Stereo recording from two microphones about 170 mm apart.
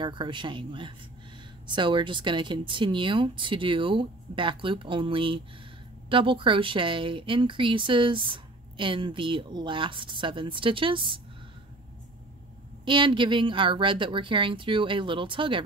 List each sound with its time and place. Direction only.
0.0 s speech: 30° right (ahead or behind)
12.8 s speech: 30° right (ahead or behind)